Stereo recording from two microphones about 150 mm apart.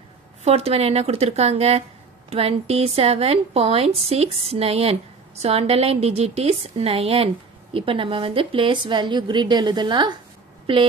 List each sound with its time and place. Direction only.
0.4 s a woman's voice: 45° right (ahead or behind)